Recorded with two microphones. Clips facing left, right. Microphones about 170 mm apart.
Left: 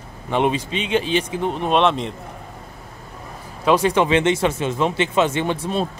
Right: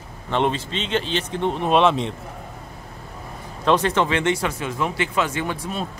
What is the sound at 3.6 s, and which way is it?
Speech, 10° left (ahead or behind).